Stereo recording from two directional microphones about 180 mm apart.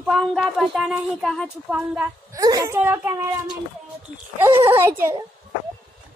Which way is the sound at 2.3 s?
20° right (ahead or behind).